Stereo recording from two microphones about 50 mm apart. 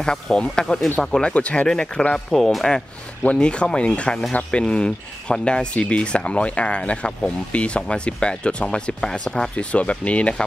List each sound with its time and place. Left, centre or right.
0.0 s speech: centre
2.3 s speech: centre
3.3 s speech: centre